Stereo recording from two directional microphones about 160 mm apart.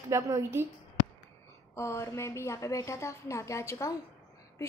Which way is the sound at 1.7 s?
15° left (ahead or behind).